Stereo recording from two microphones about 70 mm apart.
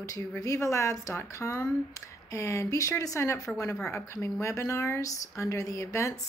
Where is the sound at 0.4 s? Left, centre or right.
Left.